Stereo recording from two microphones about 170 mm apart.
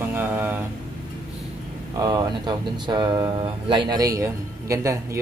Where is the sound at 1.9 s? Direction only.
25° right (ahead or behind).